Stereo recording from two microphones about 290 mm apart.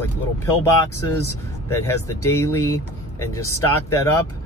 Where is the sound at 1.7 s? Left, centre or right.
Centre.